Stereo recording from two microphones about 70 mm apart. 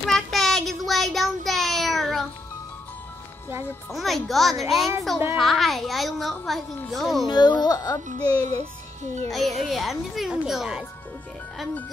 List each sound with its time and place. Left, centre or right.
0.0 s child singing: centre
3.9 s a woman's voice: centre
7.2 s a child's voice: left
9.3 s a woman's voice: centre